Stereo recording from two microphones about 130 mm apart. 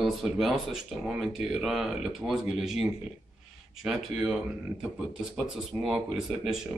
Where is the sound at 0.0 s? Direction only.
Centre (ahead or behind).